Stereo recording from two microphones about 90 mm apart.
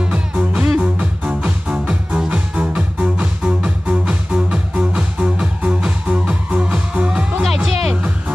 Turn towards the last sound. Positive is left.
turn(degrees=-5)  # may be behind; listen again after turning